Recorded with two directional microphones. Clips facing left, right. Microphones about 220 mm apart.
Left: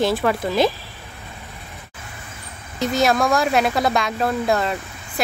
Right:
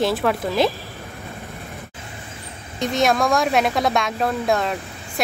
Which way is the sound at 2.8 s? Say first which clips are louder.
Left 1 dB; centre (ahead or behind).